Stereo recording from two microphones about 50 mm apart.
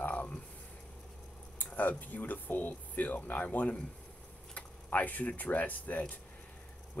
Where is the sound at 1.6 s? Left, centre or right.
Left.